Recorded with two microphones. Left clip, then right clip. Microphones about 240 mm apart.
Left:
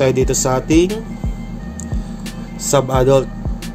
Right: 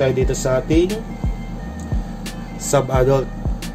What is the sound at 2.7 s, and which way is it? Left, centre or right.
Speech, centre.